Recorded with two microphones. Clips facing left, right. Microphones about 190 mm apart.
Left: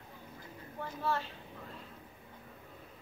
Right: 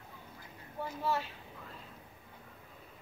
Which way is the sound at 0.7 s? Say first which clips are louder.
Right 1 dB; 10° right (ahead or behind).